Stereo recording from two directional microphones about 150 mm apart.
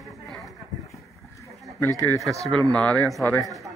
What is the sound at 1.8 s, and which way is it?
Speech, 20° left (ahead or behind).